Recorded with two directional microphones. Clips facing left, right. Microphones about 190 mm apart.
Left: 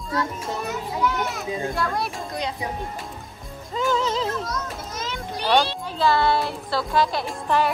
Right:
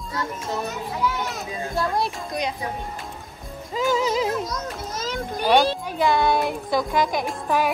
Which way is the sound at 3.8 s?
10° right (ahead or behind).